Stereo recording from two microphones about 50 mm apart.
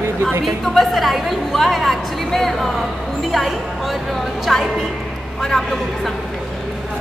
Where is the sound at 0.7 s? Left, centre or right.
Centre.